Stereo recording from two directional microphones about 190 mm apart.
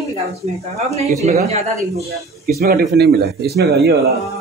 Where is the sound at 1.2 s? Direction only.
35° right (ahead or behind).